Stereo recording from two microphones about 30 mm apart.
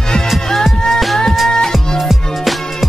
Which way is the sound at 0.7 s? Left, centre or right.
Centre.